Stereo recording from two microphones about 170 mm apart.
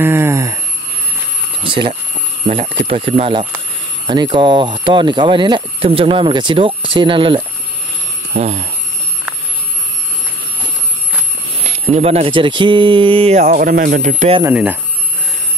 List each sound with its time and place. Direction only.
0.0 s a sound: 15° right (ahead or behind)
1.6 s a sound: 30° right (ahead or behind)
2.4 s speech: 35° right (ahead or behind)
8.3 s speech: 40° right (ahead or behind)
11.6 s speech: 35° right (ahead or behind)
13.4 s speech: 55° right (ahead or behind)
14.4 s speech: 10° right (ahead or behind)